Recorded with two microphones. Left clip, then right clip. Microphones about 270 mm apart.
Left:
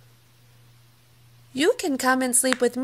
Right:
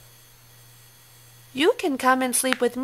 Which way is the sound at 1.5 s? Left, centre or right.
Centre.